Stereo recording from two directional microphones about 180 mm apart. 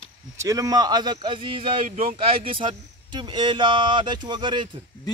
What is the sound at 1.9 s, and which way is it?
Speech, 40° right (ahead or behind).